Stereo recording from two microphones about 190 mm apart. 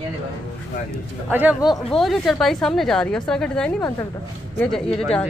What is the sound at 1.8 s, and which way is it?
A woman's voice, centre (ahead or behind).